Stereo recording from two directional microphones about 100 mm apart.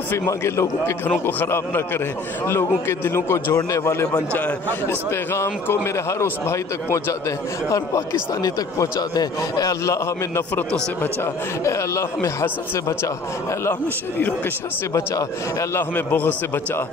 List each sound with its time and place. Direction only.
0.1 s a man's voice: 25° left (ahead or behind)
2.9 s a man's voice: 25° left (ahead or behind)
10.5 s a man's voice: 15° left (ahead or behind)
11.6 s a man's voice: 30° left (ahead or behind)
15.7 s a man's voice: 20° left (ahead or behind)